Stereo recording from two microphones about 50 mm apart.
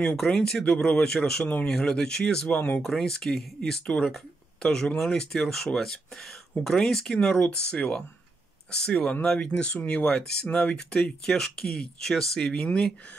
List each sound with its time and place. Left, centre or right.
0.2 s speech: centre
7.3 s speech: left; by 12.6 s centre
12.6 s speech: centre